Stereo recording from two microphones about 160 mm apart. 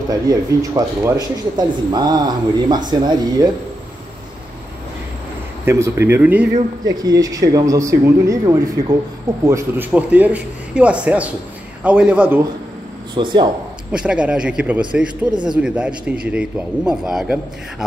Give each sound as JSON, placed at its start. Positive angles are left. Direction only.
{"t": 0.1, "sound": "speech", "side_deg": -25}
{"t": 5.7, "sound": "a man's voice", "side_deg": -15}
{"t": 6.5, "sound": "a man's voice", "side_deg": -25}
{"t": 13.1, "sound": "speech", "side_deg": -30}
{"t": 13.9, "sound": "a man's voice", "side_deg": -5}